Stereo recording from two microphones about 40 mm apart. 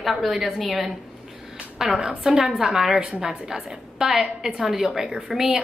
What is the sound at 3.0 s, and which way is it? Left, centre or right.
A woman's voice, right.